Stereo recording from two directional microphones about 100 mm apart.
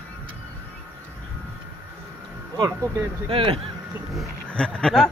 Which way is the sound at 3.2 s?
65° right (ahead or behind).